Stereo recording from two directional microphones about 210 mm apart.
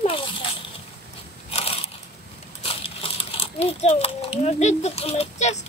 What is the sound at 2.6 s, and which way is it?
Crumpling, 25° left (ahead or behind).